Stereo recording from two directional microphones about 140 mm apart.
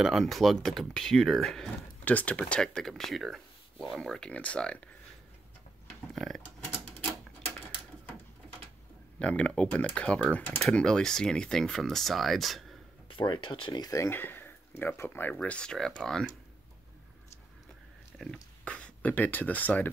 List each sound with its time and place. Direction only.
0.0 s speech: centre (ahead or behind)
6.1 s a sound: centre (ahead or behind)
9.2 s speech: 10° left (ahead or behind)
13.1 s speech: 35° left (ahead or behind); by 16.3 s 5° left (ahead or behind)
18.2 s speech: 5° left (ahead or behind)